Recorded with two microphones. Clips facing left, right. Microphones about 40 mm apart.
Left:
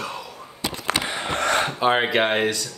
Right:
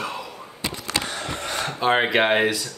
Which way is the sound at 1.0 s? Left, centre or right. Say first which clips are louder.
Left 2 dB; left.